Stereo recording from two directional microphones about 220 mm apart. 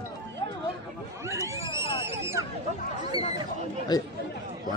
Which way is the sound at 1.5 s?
15° right (ahead or behind).